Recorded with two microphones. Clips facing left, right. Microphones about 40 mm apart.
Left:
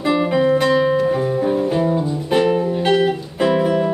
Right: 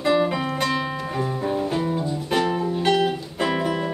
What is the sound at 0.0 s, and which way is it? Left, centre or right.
Music, centre.